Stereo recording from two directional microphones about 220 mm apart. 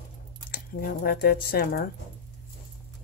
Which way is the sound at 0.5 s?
45° left (ahead or behind).